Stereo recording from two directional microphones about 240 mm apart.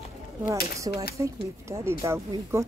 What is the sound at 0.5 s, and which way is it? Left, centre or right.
Speech, centre.